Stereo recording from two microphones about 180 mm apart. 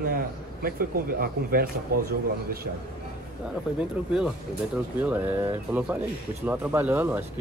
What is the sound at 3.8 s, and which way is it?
Speech, 5° right (ahead or behind).